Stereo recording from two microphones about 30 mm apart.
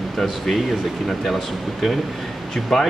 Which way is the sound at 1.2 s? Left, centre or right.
Centre.